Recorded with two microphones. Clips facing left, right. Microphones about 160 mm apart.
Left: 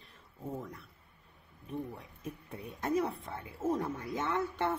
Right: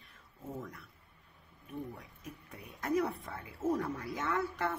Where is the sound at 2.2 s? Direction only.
30° left (ahead or behind).